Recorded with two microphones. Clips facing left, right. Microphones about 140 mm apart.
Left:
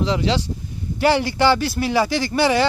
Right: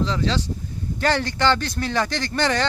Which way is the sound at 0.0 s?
15° left (ahead or behind).